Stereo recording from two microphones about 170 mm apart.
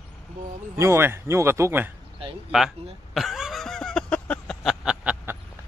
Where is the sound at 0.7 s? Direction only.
15° right (ahead or behind).